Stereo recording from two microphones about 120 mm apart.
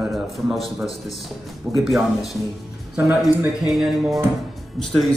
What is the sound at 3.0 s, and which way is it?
Speech, 15° right (ahead or behind).